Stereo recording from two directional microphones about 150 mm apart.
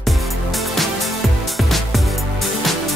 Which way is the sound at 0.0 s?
Centre (ahead or behind).